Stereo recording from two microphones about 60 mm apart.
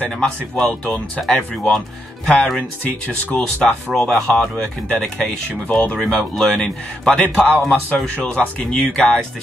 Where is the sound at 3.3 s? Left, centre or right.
Centre.